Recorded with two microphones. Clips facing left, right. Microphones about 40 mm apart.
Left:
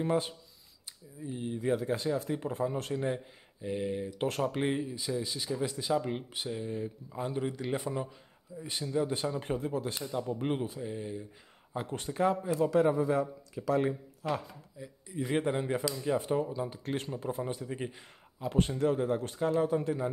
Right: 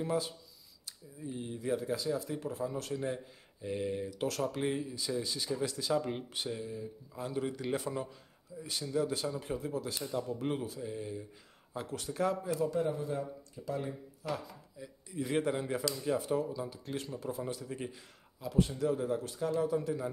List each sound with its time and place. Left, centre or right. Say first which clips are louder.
0.0 s speech: left 4 dB; left
1.2 s speech: left 3 dB; centre
1.6 s speech: left 3 dB; left
3.6 s speech: left 2 dB; centre
4.1 s speech: left 3 dB; left
5.1 s speech: left 1 dB; centre
7.1 s speech: left 1 dB; left
7.4 s speech: left 1 dB; centre; by 10.8 s left
10.8 s speech: left 2 dB; centre
12.7 s speech: left 7 dB; left
14.2 s speech: left 4 dB; left
14.8 s speech: left 2 dB; centre
18.5 s speech: left 2 dB; left